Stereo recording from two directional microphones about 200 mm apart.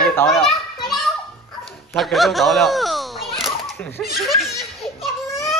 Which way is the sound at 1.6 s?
Centre (ahead or behind).